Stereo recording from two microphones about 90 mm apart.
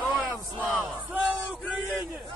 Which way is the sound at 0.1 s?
15° right (ahead or behind).